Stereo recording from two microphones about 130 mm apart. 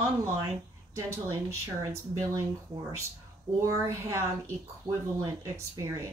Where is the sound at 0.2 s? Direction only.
20° right (ahead or behind).